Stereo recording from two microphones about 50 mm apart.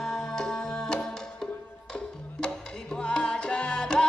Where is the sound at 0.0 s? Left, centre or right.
Centre.